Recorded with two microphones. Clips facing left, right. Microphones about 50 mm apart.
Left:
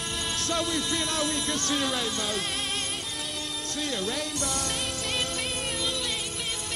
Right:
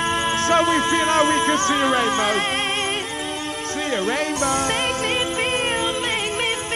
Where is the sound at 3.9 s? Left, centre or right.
Right.